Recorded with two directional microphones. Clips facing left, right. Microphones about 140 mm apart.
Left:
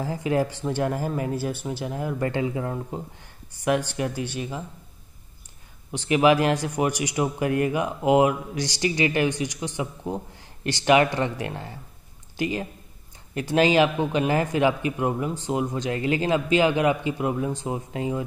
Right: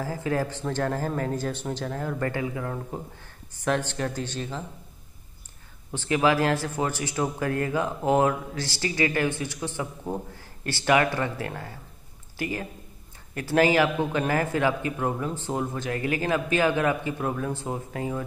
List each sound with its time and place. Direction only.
0.0 s speech: 20° left (ahead or behind)
5.9 s a man's voice: 15° left (ahead or behind)